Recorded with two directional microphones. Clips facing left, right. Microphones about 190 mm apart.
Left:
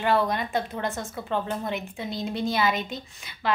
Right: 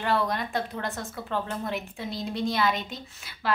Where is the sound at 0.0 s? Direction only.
Centre (ahead or behind).